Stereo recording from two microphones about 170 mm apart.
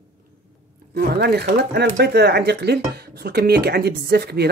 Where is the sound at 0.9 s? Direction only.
70° right (ahead or behind).